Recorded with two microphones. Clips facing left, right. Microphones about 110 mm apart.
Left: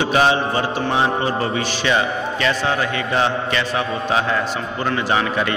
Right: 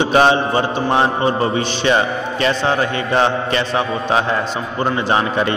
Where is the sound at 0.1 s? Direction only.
30° right (ahead or behind).